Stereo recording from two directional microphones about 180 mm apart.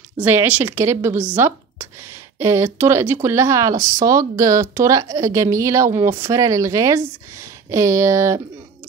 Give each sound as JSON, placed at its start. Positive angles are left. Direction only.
{"t": 0.2, "sound": "speech", "side_deg": -10}